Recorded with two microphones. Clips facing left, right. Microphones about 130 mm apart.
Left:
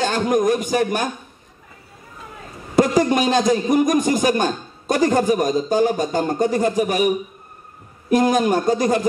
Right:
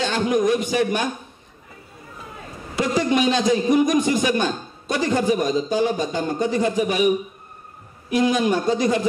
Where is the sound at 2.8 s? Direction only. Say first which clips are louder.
Left 4 dB; 45° left (ahead or behind).